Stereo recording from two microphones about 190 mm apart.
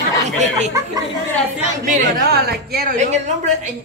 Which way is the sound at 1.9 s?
50° right (ahead or behind).